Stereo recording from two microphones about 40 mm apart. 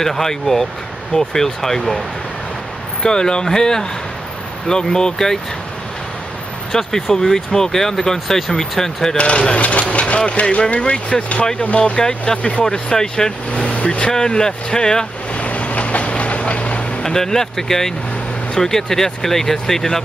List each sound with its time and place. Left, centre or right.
0.0 s speech: centre
3.0 s speech: centre
6.7 s speech: centre
9.1 s speech: left
15.3 s vehicle: left
17.0 s speech: centre